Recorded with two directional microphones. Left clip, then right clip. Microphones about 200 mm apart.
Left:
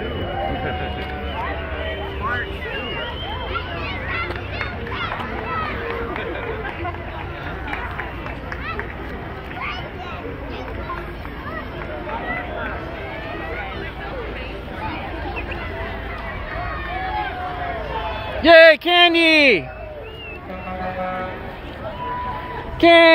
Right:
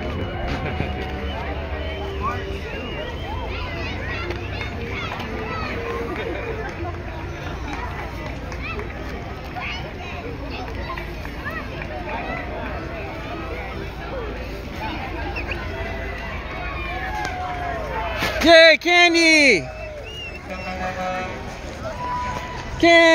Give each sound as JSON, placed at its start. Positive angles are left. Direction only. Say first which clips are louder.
{"t": 18.4, "sound": "speech", "louder": "left 2 dB", "side_deg": -15}
{"t": 22.8, "sound": "speech", "louder": "left 2 dB", "side_deg": 5}